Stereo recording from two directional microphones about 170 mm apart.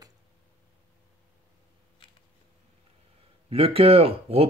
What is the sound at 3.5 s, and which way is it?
Speech, 35° right (ahead or behind).